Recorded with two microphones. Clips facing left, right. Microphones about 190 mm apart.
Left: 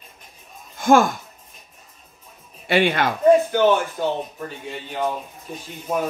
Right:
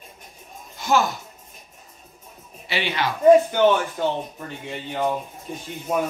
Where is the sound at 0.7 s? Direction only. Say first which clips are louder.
Left 6 dB; 50° left (ahead or behind).